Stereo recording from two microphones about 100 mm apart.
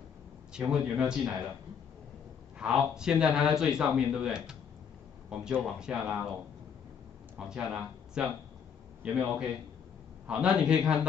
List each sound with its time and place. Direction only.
0.5 s speech: 10° right (ahead or behind)
2.6 s speech: 5° right (ahead or behind)
7.3 s speech: 5° right (ahead or behind)